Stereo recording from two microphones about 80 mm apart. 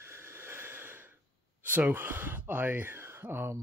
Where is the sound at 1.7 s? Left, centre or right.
Right.